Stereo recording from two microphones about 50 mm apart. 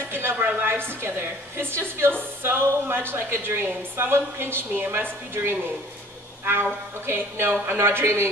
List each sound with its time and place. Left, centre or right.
0.1 s a sound: right
0.7 s a woman's voice: right
5.3 s a woman's voice: right